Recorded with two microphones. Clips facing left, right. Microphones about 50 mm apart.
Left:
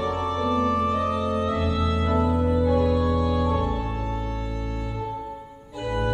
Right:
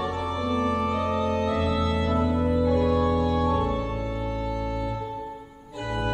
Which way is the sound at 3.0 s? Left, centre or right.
Centre.